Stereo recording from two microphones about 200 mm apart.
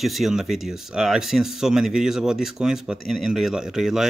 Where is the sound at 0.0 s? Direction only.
Centre (ahead or behind).